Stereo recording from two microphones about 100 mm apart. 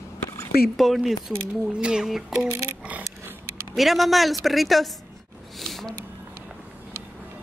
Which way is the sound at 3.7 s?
Centre (ahead or behind).